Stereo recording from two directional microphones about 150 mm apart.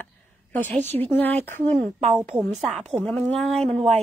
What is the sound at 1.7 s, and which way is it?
Speech, centre (ahead or behind).